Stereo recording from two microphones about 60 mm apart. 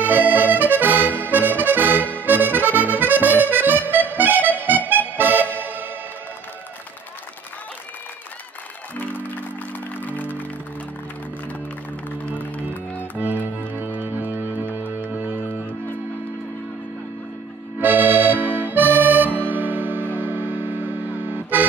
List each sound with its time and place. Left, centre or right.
0.0 s accordion: right
2.2 s music: right
8.9 s music: left
13.7 s music: right
17.7 s accordion: right
20.2 s music: right